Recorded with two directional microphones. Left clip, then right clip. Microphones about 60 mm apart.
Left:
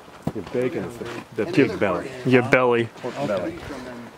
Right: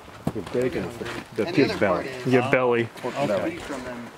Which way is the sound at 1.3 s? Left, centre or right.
Left.